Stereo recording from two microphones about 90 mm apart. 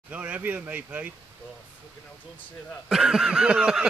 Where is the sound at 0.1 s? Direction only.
15° right (ahead or behind).